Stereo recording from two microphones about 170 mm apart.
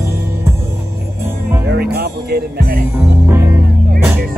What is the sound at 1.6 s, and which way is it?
Music, 70° right (ahead or behind).